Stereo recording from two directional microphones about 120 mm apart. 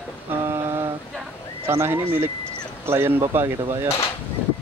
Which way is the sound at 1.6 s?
20° right (ahead or behind).